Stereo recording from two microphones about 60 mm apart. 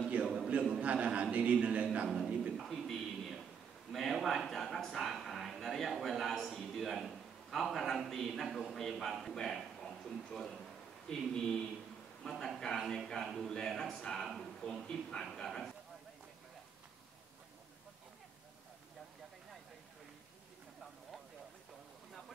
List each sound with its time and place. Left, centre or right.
0.7 s a man's voice: right
2.0 s a man's voice: centre
2.5 s a sound: centre
8.1 s a man's voice: centre